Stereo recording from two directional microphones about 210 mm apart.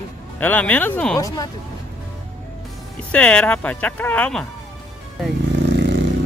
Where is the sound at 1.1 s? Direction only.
15° left (ahead or behind).